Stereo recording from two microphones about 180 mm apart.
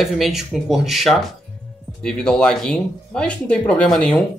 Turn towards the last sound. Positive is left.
turn(degrees=5)  # may be behind; listen again after turning